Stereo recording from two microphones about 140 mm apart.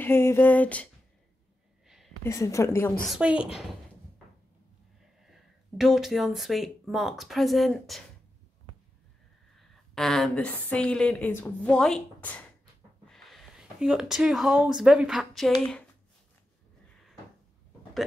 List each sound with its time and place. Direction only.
0.0 s a woman's voice: 15° left (ahead or behind)
1.9 s a sound: centre (ahead or behind)
2.2 s a woman's voice: 20° left (ahead or behind)
3.1 s a woman's voice: 5° right (ahead or behind)
5.2 s speech: 5° right (ahead or behind)
9.9 s a woman's voice: centre (ahead or behind)
13.0 s a sound: centre (ahead or behind)
14.8 s a woman's voice: 5° right (ahead or behind)